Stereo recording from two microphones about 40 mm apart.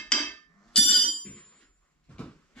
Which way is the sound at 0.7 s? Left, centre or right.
Centre.